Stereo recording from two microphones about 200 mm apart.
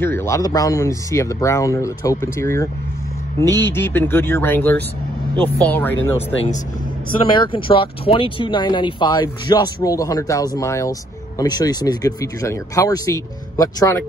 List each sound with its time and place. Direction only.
0.0 s speech: 10° left (ahead or behind)
7.1 s speech: 25° left (ahead or behind)